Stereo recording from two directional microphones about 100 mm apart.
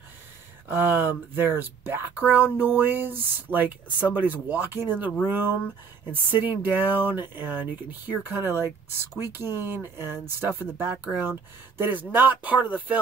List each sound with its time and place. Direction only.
0.7 s speech: 20° right (ahead or behind)